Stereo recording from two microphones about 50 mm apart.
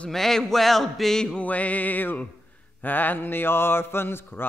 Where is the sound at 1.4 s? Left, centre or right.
Left.